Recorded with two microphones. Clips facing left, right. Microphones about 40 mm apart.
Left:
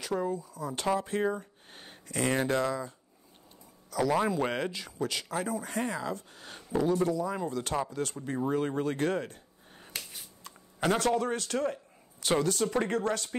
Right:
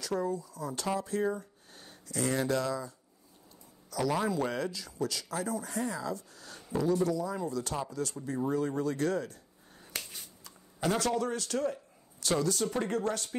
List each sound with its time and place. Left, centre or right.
0.0 s speech: left
4.1 s speech: left